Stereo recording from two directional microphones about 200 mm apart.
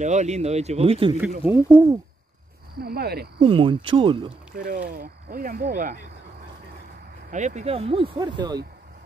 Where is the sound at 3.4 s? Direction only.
25° right (ahead or behind).